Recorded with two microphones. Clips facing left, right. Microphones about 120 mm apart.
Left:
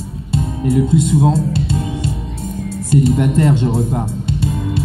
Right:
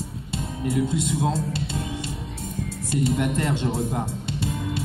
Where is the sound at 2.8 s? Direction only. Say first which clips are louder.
Left 9 dB; 40° left (ahead or behind).